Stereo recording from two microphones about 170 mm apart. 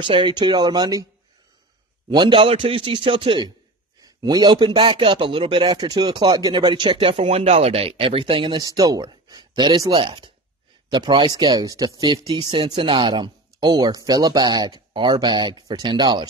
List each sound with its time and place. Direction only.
0.0 s a man's voice: 30° right (ahead or behind)
2.0 s a man's voice: 30° right (ahead or behind)